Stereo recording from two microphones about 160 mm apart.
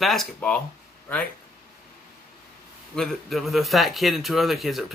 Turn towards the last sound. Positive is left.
turn(degrees=0)  # may be behind; listen again after turning